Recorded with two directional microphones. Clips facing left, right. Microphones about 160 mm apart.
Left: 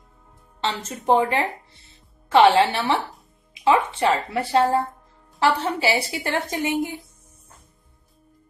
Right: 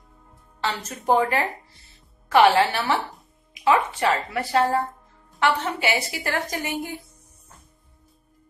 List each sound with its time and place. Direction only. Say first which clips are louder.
0.6 s a woman's voice: left 1 dB; 25° left (ahead or behind)